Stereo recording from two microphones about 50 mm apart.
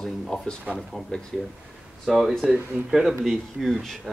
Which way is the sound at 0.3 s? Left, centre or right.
Centre.